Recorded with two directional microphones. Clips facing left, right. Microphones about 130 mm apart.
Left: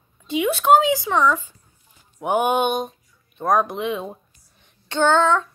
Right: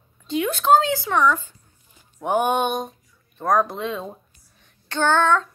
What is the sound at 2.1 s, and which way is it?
Music, 5° left (ahead or behind).